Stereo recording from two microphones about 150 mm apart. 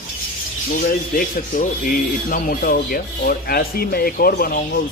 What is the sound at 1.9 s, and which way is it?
Speech, 65° left (ahead or behind).